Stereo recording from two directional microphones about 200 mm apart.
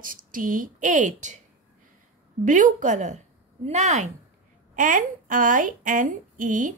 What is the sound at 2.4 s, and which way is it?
A woman's voice, 40° right (ahead or behind).